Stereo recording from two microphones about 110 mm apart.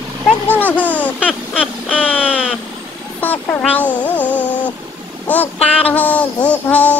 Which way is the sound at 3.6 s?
15° left (ahead or behind).